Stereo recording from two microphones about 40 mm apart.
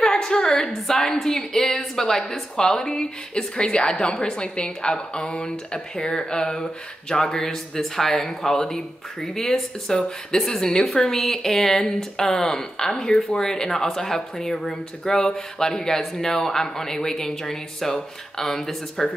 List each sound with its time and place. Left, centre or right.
0.0 s speech: centre